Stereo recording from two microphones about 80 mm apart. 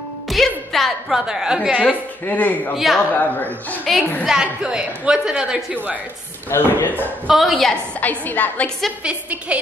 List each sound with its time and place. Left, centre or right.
0.3 s a woman's voice: centre
2.2 s a woman's voice: left
2.7 s a woman's voice: centre
3.1 s a woman's voice: left
3.9 s a woman's voice: centre
6.5 s speech: left
7.2 s a woman's voice: centre
8.0 s a woman's voice: left
9.0 s a woman's voice: centre